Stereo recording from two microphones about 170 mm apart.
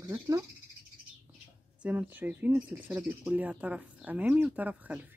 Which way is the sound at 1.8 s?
10° right (ahead or behind).